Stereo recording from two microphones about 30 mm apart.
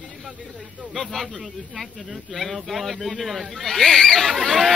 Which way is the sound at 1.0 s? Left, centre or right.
Centre.